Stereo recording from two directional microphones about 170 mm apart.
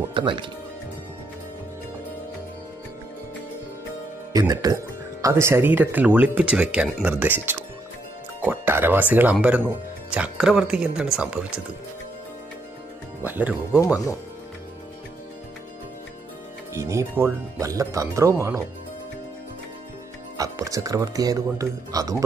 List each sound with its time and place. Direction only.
0.1 s speech: 30° right (ahead or behind)
4.3 s speech: 20° right (ahead or behind); by 11.6 s 5° right (ahead or behind)
13.2 s speech: 10° right (ahead or behind)
16.7 s speech: 15° right (ahead or behind)
20.3 s speech: 20° right (ahead or behind)